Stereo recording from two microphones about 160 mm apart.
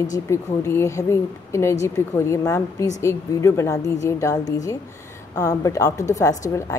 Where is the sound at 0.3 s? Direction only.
15° left (ahead or behind).